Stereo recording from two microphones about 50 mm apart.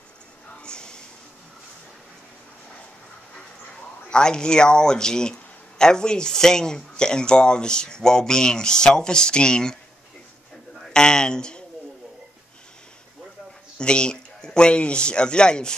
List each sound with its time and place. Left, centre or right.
0.6 s a sound: centre
4.1 s speech: centre
10.9 s a man's voice: centre
13.7 s speech: centre